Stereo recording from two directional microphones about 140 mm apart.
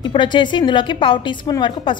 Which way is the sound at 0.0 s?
35° left (ahead or behind).